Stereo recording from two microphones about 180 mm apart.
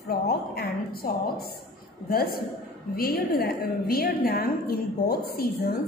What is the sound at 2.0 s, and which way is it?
A woman's voice, 55° left (ahead or behind).